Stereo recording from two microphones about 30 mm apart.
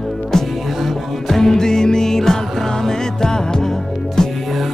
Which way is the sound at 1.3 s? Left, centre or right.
Centre.